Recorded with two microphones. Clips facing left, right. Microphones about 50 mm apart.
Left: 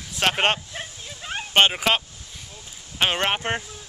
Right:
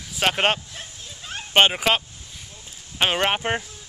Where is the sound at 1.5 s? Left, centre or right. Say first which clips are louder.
Right 1 dB; centre.